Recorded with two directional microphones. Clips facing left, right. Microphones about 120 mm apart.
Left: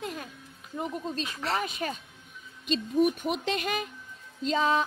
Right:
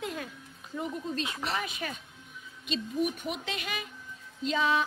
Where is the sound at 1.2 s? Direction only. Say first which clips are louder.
Even; 20° right (ahead or behind).